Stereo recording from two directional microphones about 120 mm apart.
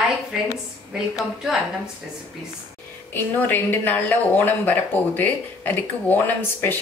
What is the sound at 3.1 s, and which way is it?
Speech, 15° left (ahead or behind).